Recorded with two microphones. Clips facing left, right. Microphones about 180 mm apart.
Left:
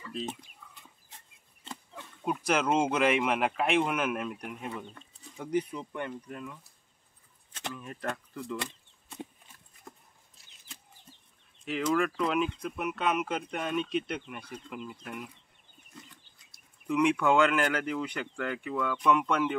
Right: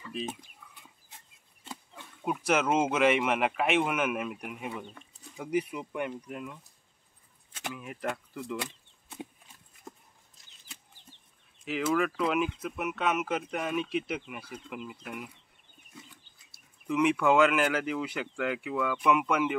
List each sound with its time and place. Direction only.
0.1 s speech: 10° right (ahead or behind)
2.2 s speech: centre (ahead or behind)
9.9 s a sound: 15° right (ahead or behind)
11.6 s speech: 5° right (ahead or behind)
15.9 s a sound: 5° right (ahead or behind)
16.8 s speech: centre (ahead or behind)